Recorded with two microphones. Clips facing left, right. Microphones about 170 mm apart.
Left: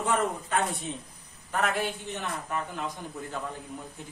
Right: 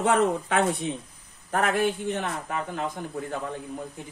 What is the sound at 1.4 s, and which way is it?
Speech, 50° right (ahead or behind).